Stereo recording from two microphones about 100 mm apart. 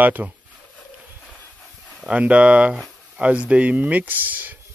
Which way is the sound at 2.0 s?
15° right (ahead or behind).